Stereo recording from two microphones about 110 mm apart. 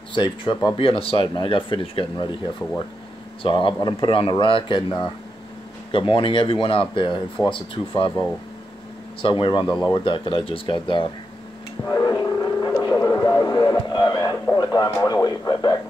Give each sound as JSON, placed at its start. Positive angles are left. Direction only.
{"t": 0.1, "sound": "speech", "side_deg": 45}
{"t": 0.7, "sound": "speech", "side_deg": 55}
{"t": 3.4, "sound": "speech", "side_deg": 50}
{"t": 5.9, "sound": "speech", "side_deg": 55}
{"t": 9.2, "sound": "speech", "side_deg": 50}
{"t": 11.9, "sound": "a sound", "side_deg": 40}